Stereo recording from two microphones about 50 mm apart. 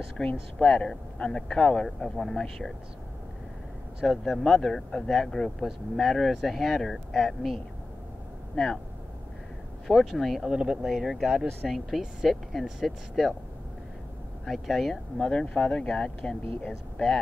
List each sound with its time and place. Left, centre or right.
0.2 s speech: centre
4.0 s speech: centre
9.8 s speech: centre
10.5 s speech: centre
10.9 s speech: centre
14.4 s speech: centre
15.1 s speech: centre